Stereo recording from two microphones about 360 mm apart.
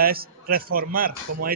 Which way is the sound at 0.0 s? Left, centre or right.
Right.